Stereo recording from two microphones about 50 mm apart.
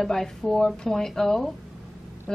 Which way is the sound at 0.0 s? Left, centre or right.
Centre.